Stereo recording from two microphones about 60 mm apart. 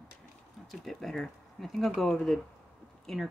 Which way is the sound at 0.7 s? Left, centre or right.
Centre.